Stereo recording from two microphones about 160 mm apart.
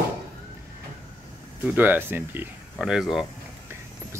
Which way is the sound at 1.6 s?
10° right (ahead or behind).